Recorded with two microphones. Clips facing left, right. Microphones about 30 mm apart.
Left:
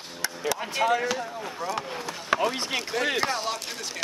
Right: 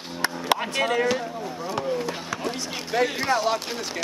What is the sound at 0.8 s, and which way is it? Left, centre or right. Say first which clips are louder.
Speech: right 1 dB; centre.